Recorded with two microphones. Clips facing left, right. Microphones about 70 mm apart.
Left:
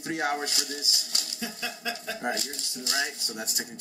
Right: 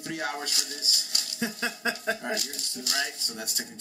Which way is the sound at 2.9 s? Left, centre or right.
Centre.